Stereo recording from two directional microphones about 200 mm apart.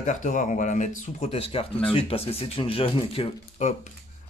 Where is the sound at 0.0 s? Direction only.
40° left (ahead or behind).